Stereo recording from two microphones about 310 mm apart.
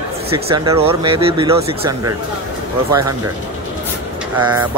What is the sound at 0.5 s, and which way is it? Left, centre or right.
Speech, centre.